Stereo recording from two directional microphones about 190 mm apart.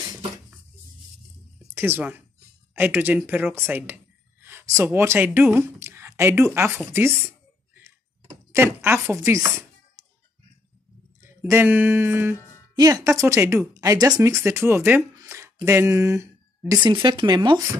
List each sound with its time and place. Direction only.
1.6 s speech: 10° right (ahead or behind)
6.9 s a sound: 10° right (ahead or behind)
8.3 s speech: 15° right (ahead or behind)
11.4 s speech: 10° right (ahead or behind)
16.8 s speech: 25° right (ahead or behind)